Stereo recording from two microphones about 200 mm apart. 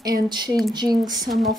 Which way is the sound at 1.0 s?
20° right (ahead or behind).